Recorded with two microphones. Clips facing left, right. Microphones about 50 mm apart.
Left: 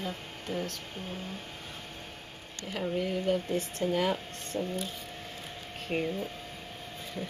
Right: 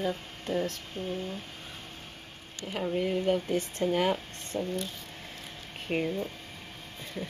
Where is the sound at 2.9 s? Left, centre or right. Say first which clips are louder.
Right 2 dB; right.